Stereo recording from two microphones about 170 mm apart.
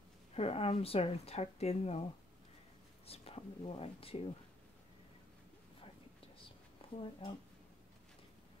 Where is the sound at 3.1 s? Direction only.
35° left (ahead or behind).